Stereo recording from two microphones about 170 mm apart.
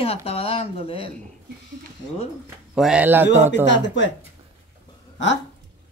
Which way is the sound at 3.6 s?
90° left.